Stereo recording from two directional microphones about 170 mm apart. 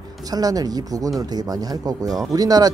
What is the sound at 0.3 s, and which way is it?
Speech, 20° right (ahead or behind).